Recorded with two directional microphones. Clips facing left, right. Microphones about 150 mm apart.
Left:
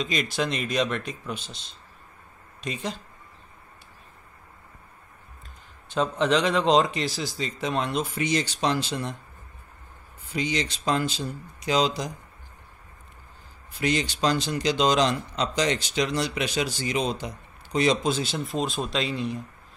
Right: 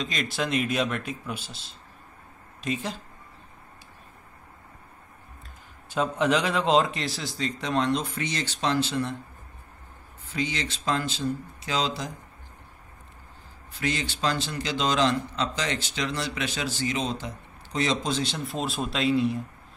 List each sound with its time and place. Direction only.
0.0 s a man's voice: centre (ahead or behind)
5.9 s a man's voice: 10° right (ahead or behind); by 9.1 s 15° left (ahead or behind)
10.3 s a man's voice: 20° left (ahead or behind)
13.7 s a man's voice: 15° left (ahead or behind); by 19.4 s 5° right (ahead or behind)